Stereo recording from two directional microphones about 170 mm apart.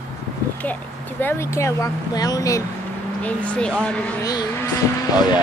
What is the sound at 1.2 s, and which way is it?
Speech, 15° left (ahead or behind).